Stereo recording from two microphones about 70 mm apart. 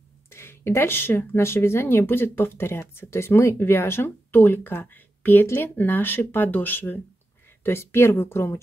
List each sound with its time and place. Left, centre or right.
0.3 s speech: left